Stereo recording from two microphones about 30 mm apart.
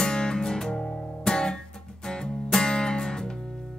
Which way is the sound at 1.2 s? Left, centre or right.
Centre.